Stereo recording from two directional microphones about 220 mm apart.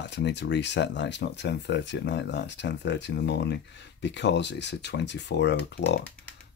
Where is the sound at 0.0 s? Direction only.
50° left (ahead or behind).